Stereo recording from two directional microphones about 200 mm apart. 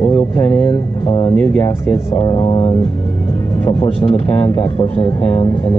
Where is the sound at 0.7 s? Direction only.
25° left (ahead or behind).